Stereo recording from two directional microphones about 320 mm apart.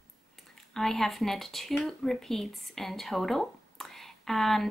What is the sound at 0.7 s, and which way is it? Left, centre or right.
Speech, centre.